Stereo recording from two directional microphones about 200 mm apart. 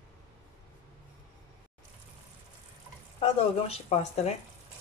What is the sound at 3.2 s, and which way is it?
Speech, 30° left (ahead or behind).